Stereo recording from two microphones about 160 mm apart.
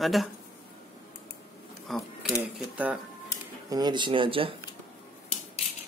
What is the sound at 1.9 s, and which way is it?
Speech, centre (ahead or behind).